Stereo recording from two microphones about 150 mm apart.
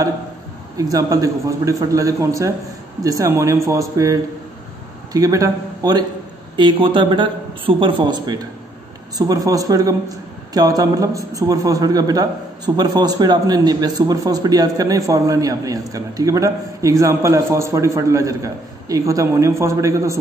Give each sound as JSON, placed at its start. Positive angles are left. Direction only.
{"t": 0.7, "sound": "a man's voice", "side_deg": -25}